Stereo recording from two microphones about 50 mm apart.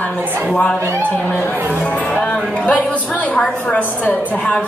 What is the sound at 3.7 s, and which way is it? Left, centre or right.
Speech, left.